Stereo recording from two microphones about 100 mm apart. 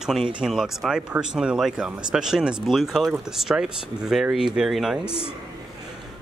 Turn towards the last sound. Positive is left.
turn(degrees=-5)  # may be behind; listen again after turning